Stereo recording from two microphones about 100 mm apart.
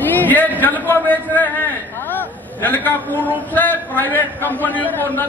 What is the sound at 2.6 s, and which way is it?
A man's voice, 20° left (ahead or behind).